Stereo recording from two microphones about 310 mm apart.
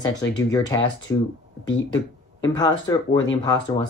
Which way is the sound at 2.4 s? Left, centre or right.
Centre.